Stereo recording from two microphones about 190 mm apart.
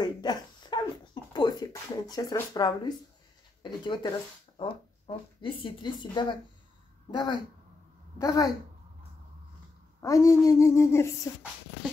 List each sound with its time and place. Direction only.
0.0 s a sound: 20° left (ahead or behind)
3.8 s speech: 25° left (ahead or behind)
9.9 s speech: 15° left (ahead or behind)